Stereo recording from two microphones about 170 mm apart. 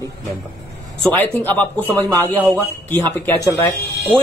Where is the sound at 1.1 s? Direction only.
10° left (ahead or behind).